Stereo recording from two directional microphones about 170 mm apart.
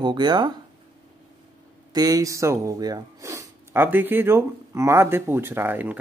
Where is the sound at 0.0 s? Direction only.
25° right (ahead or behind).